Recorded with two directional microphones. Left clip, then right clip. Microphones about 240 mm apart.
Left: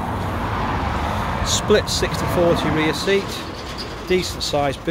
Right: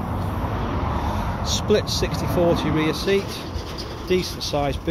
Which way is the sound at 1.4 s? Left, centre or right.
Centre.